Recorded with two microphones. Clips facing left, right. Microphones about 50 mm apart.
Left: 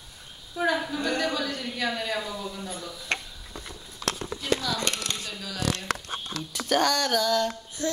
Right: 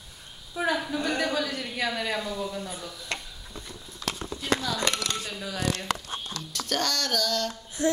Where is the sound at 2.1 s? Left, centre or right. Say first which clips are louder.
Right 1 dB; centre.